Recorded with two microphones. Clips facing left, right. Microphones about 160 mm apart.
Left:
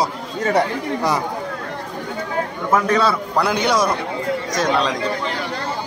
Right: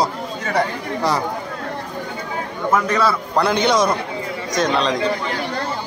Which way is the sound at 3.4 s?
5° left (ahead or behind).